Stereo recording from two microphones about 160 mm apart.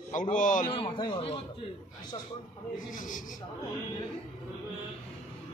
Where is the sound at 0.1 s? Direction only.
55° left (ahead or behind).